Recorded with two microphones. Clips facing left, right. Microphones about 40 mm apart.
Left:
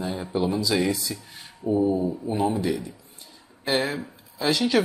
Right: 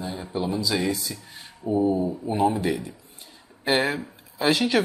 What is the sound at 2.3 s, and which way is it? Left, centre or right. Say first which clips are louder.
Speech: right 2 dB; centre.